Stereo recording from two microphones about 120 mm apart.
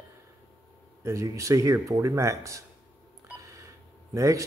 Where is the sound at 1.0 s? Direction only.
25° right (ahead or behind).